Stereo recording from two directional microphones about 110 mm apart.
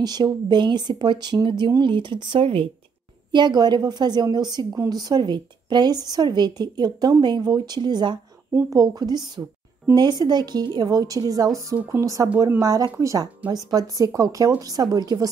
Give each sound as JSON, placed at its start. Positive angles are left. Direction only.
{"t": 0.0, "sound": "speech", "side_deg": -40}
{"t": 3.3, "sound": "speech", "side_deg": -40}
{"t": 8.5, "sound": "speech", "side_deg": -30}
{"t": 11.7, "sound": "speech", "side_deg": -20}